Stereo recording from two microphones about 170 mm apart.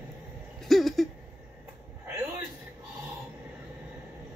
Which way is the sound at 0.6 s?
Centre (ahead or behind).